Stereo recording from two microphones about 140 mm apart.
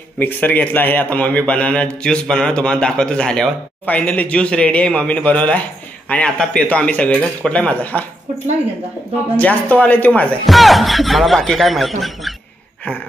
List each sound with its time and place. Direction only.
0.2 s a man's voice: 15° left (ahead or behind)
9.4 s a man's voice: 10° left (ahead or behind)
10.4 s speech: centre (ahead or behind)